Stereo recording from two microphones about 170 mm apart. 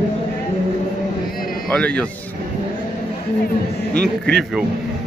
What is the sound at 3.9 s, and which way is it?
Speech, 70° right (ahead or behind).